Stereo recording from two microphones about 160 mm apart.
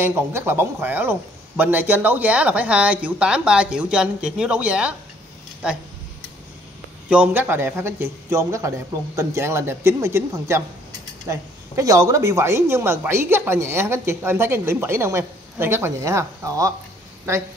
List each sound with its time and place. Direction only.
0.0 s speech: 15° right (ahead or behind)
7.1 s speech: 10° right (ahead or behind)